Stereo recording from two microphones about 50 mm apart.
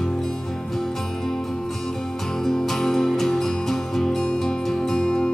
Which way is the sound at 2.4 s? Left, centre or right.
Centre.